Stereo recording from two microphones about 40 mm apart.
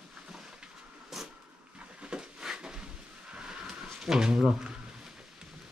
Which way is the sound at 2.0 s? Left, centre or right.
Right.